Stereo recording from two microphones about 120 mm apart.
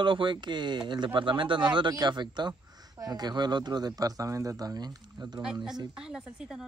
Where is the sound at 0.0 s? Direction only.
40° right (ahead or behind).